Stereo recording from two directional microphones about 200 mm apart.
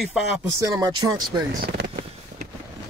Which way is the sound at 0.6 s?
20° right (ahead or behind).